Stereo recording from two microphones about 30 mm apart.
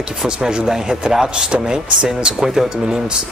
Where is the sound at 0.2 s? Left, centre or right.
Right.